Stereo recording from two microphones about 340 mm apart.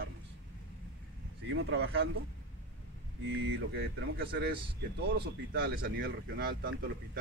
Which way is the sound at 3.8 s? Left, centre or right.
Right.